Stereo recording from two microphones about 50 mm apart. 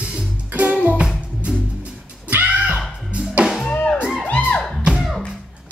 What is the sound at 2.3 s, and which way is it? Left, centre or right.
Music, right.